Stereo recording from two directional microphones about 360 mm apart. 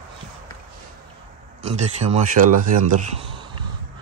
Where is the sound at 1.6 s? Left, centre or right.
Centre.